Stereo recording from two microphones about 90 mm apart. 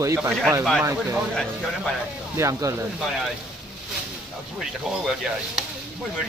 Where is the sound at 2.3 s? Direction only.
35° right (ahead or behind).